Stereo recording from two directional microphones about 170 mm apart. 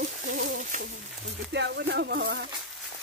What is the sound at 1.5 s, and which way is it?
Speech, 85° right.